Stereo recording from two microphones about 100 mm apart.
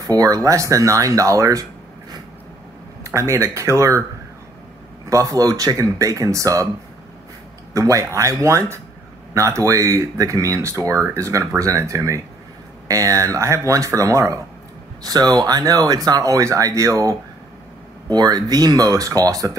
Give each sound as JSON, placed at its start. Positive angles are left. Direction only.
{"t": 0.0, "sound": "speech", "side_deg": -35}
{"t": 5.1, "sound": "speech", "side_deg": -35}
{"t": 7.7, "sound": "speech", "side_deg": -30}